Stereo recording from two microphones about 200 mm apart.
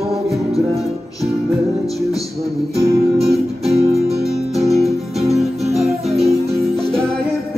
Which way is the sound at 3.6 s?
30° right (ahead or behind).